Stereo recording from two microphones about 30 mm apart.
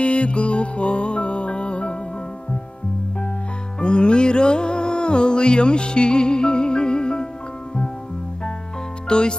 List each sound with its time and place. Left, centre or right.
0.0 s music: left
3.8 s music: left
9.1 s speech: left